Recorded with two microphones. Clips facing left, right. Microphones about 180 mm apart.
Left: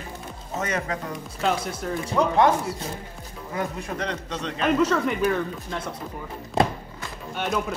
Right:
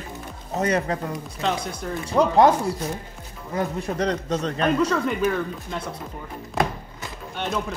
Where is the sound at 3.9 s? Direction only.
40° right (ahead or behind).